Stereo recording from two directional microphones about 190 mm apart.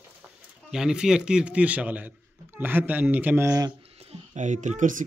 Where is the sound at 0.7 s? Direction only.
5° right (ahead or behind).